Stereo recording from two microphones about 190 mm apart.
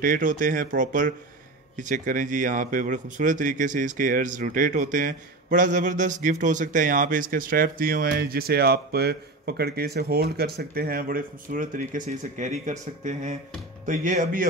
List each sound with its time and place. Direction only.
0.0 s speech: 45° right (ahead or behind)